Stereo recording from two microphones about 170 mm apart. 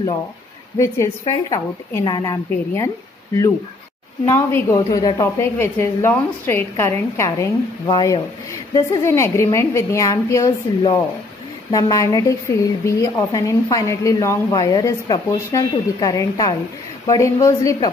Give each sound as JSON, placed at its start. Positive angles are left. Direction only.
{"t": 0.7, "sound": "a woman's voice", "side_deg": 20}
{"t": 4.3, "sound": "a woman's voice", "side_deg": 15}